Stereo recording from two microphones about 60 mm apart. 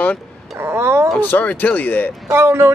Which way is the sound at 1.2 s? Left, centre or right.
Left.